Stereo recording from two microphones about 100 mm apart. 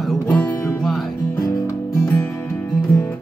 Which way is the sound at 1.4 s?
30° left (ahead or behind).